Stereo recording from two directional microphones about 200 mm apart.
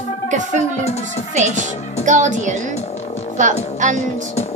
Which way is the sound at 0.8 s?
30° left (ahead or behind).